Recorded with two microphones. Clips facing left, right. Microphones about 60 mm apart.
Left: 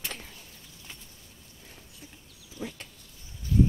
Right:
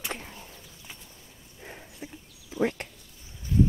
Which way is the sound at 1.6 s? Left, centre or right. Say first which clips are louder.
Right 9 dB; right.